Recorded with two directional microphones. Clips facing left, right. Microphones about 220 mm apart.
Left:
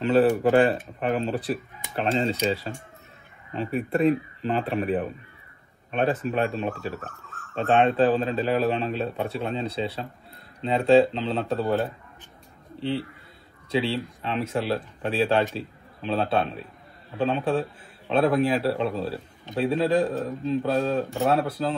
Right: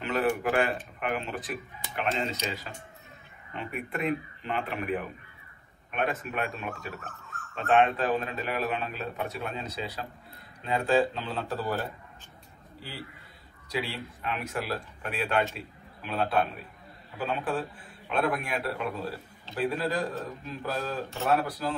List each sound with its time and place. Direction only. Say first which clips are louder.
0.0 s a man's voice: left 8 dB; 30° left (ahead or behind)